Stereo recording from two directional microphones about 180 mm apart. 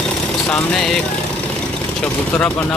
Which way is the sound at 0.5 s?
Centre (ahead or behind).